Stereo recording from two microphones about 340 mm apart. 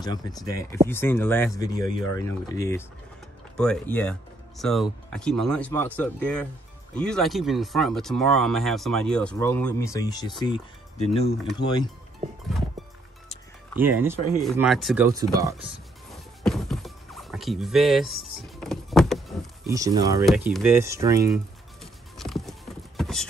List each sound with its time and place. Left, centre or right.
0.0 s speech: centre
13.7 s speech: centre
14.4 s music: centre
19.7 s speech: centre
22.1 s clip-clop: centre